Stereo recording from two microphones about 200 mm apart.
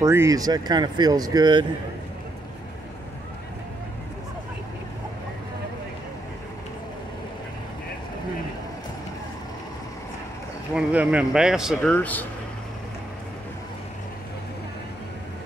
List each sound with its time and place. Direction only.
0.0 s speech: 15° right (ahead or behind)
10.7 s speech: 5° right (ahead or behind)